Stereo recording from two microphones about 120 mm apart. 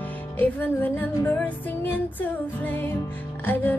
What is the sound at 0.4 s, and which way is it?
Music, 15° left (ahead or behind).